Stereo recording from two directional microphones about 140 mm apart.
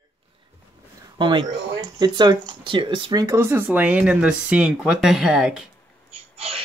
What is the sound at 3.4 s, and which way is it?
Speech, 15° right (ahead or behind).